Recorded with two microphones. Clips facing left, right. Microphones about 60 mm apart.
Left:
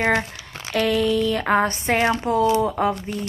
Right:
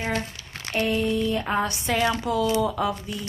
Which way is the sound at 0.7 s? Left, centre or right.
Left.